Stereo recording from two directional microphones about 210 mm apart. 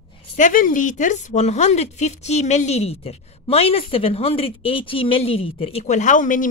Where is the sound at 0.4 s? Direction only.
40° left (ahead or behind).